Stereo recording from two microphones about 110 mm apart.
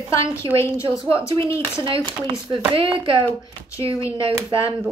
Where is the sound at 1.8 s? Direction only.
50° right (ahead or behind).